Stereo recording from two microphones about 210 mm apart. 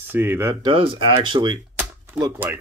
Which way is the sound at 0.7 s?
25° right (ahead or behind).